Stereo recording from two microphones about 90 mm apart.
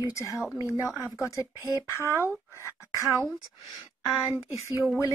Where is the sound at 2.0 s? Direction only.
30° right (ahead or behind).